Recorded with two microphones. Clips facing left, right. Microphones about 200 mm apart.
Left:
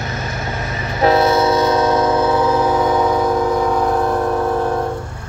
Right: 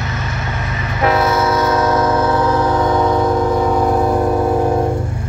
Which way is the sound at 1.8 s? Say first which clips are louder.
Even; 15° left (ahead or behind).